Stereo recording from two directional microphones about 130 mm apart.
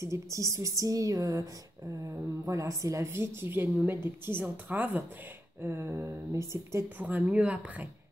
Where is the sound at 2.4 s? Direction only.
25° right (ahead or behind).